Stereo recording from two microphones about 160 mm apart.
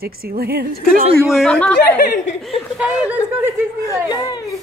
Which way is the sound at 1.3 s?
Centre (ahead or behind).